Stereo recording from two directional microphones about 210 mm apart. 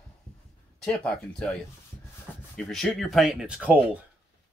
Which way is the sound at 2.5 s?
Centre (ahead or behind).